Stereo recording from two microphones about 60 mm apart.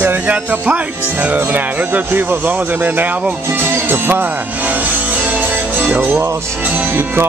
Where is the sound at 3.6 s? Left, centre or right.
Right.